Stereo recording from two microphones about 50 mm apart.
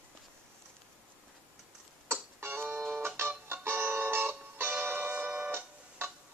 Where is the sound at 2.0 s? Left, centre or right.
Right.